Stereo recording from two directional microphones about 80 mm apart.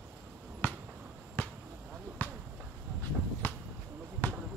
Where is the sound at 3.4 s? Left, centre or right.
Left.